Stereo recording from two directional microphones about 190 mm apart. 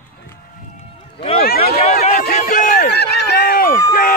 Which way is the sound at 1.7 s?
50° left (ahead or behind).